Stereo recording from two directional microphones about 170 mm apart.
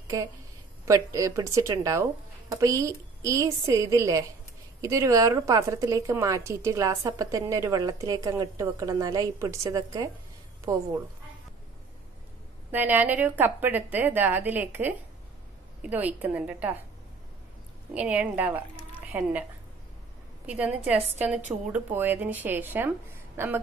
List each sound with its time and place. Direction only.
0.1 s speech: 20° right (ahead or behind)
12.7 s a woman's voice: 10° right (ahead or behind)
17.9 s a woman's voice: 10° right (ahead or behind)
20.4 s a woman's voice: 10° right (ahead or behind)